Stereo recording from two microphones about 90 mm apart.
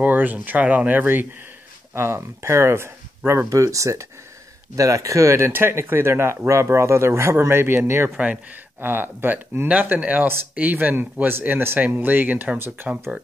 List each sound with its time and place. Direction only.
0.0 s speech: 20° right (ahead or behind)